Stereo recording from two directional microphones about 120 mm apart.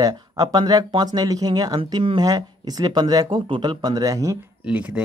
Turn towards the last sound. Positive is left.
turn(degrees=-10)  # may be behind; listen again after turning